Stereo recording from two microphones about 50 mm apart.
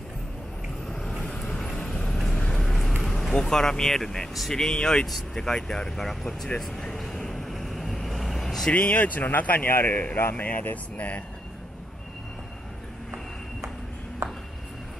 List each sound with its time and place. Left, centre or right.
0.8 s vehicle: centre
2.3 s vehicle: left
2.6 s vehicle: centre
3.0 s speech: centre
6.6 s vehicle: centre
8.7 s speech: left
9.7 s a man's voice: left
10.3 s speech: left
14.2 s a sound: right